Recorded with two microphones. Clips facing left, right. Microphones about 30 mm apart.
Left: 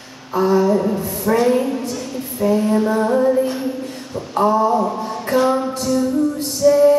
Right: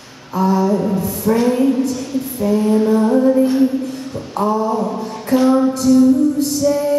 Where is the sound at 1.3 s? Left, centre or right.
Left.